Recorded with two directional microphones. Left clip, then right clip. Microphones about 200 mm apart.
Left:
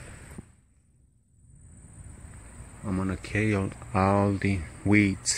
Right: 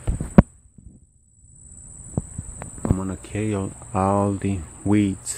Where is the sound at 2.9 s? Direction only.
5° right (ahead or behind).